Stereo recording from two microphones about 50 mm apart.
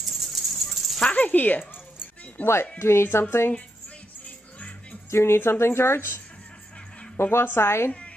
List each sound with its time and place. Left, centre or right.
0.0 s a sound: centre
1.0 s speech: left
2.8 s speech: left
5.1 s speech: left